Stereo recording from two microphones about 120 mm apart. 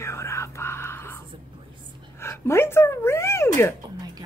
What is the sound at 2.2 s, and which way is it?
Speech, 20° left (ahead or behind).